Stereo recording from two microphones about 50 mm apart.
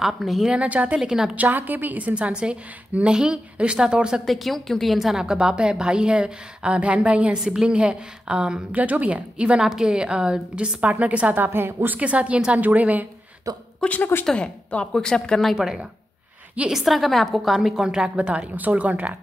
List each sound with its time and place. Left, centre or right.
0.0 s a woman's voice: centre
0.5 s a woman's voice: right
0.9 s a woman's voice: centre
1.3 s a woman's voice: right; by 4.2 s centre
4.3 s a woman's voice: centre
5.2 s a woman's voice: centre
8.7 s a woman's voice: right
9.6 s a woman's voice: centre; by 12.0 s right
12.0 s a woman's voice: right
12.5 s a woman's voice: right
13.8 s a woman's voice: left
14.2 s speech: centre
15.5 s a woman's voice: centre
18.1 s a woman's voice: right